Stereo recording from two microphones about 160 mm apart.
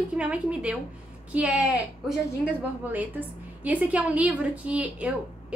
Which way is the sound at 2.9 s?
10° right (ahead or behind).